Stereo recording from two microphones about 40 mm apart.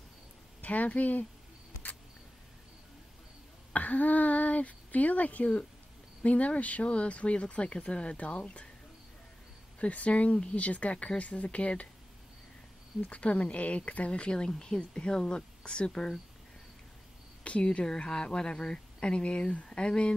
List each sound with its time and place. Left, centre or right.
0.6 s speech: left
3.7 s speech: left
9.8 s speech: left
13.1 s a woman's voice: left
17.4 s a woman's voice: left